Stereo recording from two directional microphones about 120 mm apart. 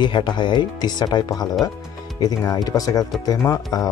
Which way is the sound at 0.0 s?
40° left (ahead or behind).